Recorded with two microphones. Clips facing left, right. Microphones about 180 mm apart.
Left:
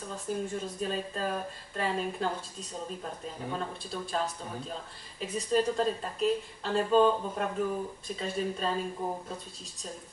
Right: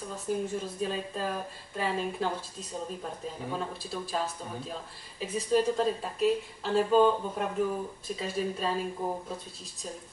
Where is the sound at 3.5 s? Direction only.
5° right (ahead or behind).